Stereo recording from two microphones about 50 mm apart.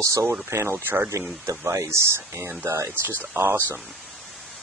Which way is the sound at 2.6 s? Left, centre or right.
Right.